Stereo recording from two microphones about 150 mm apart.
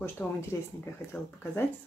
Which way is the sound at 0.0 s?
15° left (ahead or behind).